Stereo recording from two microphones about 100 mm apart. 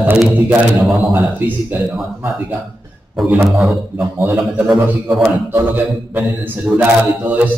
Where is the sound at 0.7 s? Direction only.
Centre (ahead or behind).